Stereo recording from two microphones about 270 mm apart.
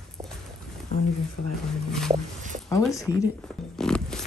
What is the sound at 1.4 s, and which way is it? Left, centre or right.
Speech, left.